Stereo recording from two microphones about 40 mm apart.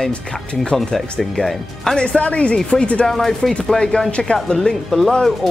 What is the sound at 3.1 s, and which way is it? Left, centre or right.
Speech, centre.